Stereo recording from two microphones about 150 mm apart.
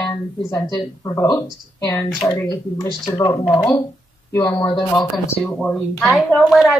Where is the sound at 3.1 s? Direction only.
20° left (ahead or behind).